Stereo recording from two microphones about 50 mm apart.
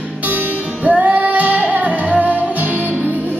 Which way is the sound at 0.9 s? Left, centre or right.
Right.